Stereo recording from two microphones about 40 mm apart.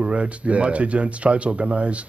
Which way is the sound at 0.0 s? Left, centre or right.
Right.